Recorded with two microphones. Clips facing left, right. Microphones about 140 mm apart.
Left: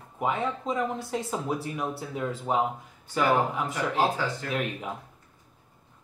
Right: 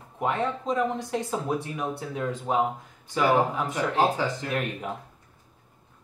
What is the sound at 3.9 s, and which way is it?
Speech, 15° right (ahead or behind).